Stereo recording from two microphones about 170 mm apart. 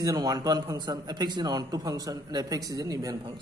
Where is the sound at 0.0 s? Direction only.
20° right (ahead or behind).